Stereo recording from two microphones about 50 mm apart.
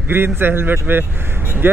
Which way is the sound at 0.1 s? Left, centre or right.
Right.